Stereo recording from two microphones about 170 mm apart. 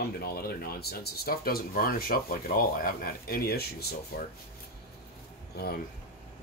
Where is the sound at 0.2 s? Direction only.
65° left (ahead or behind).